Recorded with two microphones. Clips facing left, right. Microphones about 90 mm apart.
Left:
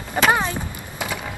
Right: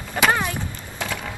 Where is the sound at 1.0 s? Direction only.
10° left (ahead or behind).